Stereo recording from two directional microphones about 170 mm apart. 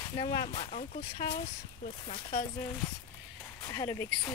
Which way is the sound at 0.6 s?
50° left (ahead or behind).